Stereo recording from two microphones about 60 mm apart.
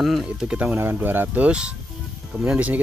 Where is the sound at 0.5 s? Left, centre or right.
Centre.